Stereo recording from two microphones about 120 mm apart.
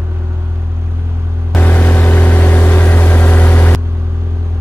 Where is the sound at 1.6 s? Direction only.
15° left (ahead or behind).